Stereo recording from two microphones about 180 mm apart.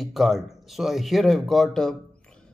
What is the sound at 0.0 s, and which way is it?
Speech, centre (ahead or behind).